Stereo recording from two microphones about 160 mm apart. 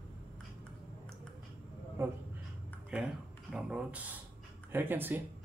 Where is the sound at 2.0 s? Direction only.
15° right (ahead or behind).